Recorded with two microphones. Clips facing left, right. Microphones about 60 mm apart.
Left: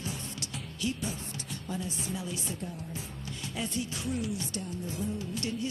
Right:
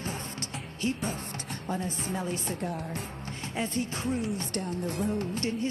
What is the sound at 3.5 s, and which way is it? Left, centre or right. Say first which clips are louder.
Music: right 4 dB; right.